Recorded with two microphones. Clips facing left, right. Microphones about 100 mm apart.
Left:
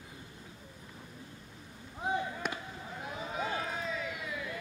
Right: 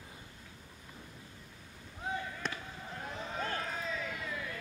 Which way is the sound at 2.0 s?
20° left (ahead or behind).